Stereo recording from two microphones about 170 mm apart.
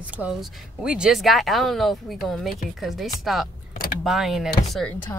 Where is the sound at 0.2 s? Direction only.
5° right (ahead or behind).